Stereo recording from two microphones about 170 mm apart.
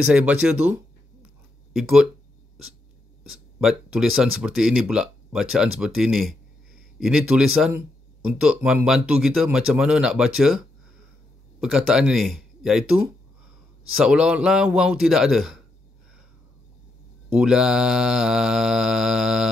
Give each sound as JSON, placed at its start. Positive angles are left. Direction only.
{"t": 0.1, "sound": "speech", "side_deg": -5}
{"t": 3.3, "sound": "speech", "side_deg": 0}
{"t": 11.6, "sound": "speech", "side_deg": -5}
{"t": 17.3, "sound": "speech", "side_deg": -5}